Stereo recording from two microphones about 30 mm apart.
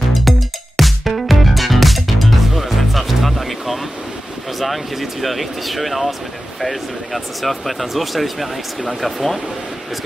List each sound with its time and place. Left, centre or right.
0.1 s music: centre
4.6 s speech: centre